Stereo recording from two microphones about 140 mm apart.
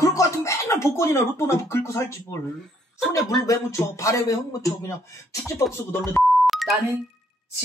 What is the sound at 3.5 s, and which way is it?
Speech, 25° left (ahead or behind).